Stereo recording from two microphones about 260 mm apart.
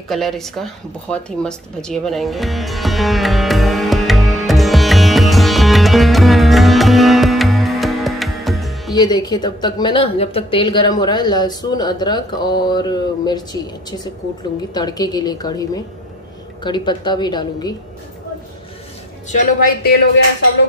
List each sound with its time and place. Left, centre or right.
0.1 s a sound: centre
8.9 s speech: centre
19.2 s a woman's voice: left